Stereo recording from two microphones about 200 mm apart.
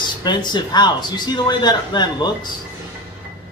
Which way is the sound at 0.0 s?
20° left (ahead or behind).